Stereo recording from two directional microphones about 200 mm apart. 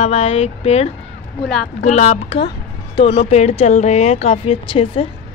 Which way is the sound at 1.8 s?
35° left (ahead or behind).